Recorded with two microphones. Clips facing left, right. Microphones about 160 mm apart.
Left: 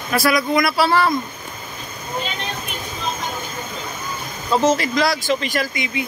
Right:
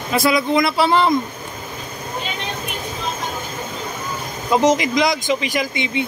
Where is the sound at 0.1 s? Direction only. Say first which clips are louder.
Right 1 dB; 25° right (ahead or behind).